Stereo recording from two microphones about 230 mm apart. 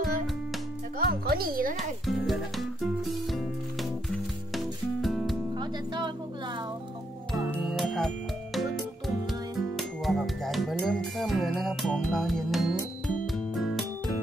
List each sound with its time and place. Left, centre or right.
0.9 s speech: right
2.0 s speech: centre
4.6 s music: centre
5.6 s music: centre
7.3 s music: centre
9.6 s music: centre